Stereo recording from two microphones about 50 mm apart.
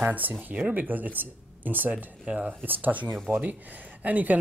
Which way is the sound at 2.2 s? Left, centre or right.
Centre.